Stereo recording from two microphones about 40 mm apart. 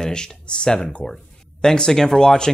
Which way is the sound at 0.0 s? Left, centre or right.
Centre.